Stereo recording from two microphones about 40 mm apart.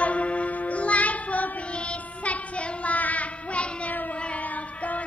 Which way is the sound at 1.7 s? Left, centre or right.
Left.